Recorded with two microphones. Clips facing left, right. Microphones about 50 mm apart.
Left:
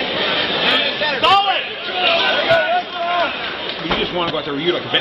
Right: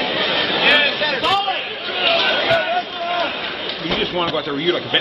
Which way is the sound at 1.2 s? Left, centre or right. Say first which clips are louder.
Left 7 dB; left.